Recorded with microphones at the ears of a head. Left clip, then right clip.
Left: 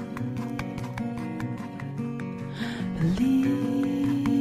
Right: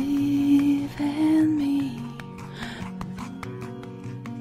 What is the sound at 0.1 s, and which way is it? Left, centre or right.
Music, right.